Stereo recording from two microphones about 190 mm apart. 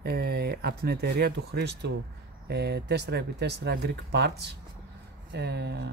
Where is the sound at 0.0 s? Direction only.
55° right (ahead or behind).